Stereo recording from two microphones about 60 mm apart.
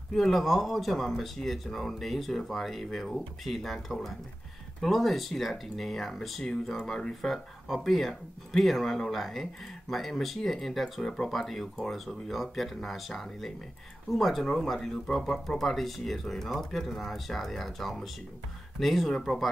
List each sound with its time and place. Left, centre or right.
0.1 s speech: centre